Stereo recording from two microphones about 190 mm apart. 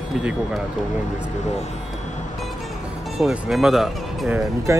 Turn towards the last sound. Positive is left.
turn(degrees=-15)  # may be behind; listen again after turning